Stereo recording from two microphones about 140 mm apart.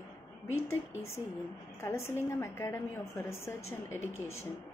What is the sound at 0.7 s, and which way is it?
A woman's voice, 20° left (ahead or behind).